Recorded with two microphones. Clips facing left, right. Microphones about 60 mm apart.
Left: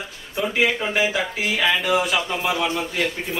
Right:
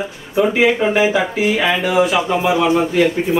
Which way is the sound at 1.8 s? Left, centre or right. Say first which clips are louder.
Right 6 dB; centre.